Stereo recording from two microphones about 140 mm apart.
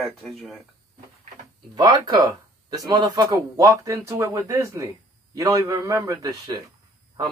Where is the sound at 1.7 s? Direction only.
30° right (ahead or behind).